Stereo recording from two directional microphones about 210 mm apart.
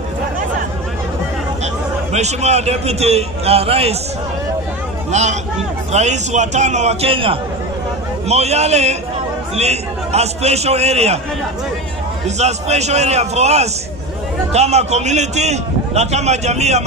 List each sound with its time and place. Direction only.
2.1 s a man's voice: 30° right (ahead or behind)
5.1 s a man's voice: 35° right (ahead or behind)
12.4 s a man's voice: 30° right (ahead or behind)